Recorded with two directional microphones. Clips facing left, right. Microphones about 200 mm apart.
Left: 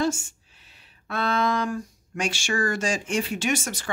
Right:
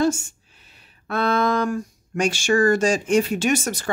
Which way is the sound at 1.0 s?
50° right (ahead or behind).